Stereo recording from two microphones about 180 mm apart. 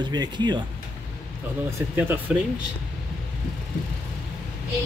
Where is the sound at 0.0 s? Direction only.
25° right (ahead or behind).